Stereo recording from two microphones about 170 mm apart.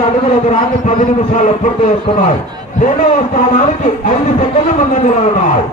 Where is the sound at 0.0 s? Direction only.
45° left (ahead or behind).